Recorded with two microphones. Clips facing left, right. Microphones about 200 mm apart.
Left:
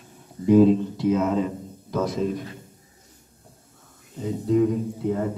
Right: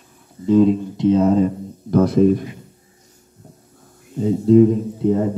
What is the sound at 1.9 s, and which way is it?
Speech, 60° right (ahead or behind).